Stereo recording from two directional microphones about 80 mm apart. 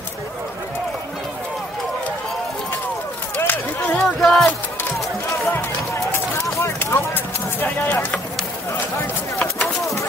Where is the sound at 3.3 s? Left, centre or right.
Left.